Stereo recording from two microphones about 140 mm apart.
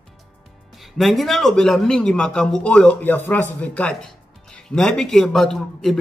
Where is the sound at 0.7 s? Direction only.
Centre (ahead or behind).